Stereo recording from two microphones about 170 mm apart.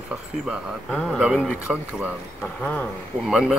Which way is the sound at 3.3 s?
Centre (ahead or behind).